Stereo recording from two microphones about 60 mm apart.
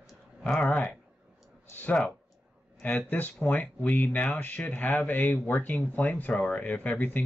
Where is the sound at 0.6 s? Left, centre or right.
Left.